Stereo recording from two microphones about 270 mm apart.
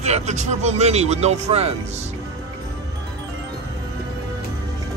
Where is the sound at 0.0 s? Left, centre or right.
Right.